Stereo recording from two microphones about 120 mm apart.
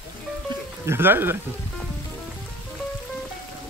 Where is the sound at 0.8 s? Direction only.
20° right (ahead or behind).